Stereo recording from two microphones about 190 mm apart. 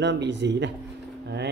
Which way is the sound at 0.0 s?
65° right (ahead or behind).